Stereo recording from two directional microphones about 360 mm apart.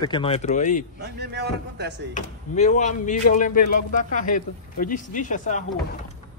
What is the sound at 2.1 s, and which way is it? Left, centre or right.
Speech, centre.